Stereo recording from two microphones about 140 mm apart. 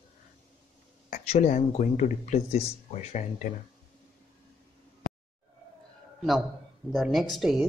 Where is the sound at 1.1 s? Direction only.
55° left (ahead or behind).